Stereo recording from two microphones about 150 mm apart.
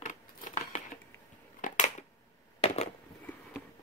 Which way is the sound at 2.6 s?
40° left (ahead or behind).